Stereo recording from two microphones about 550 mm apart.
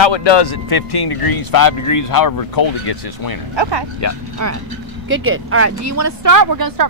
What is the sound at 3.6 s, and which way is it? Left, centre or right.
Speech, right.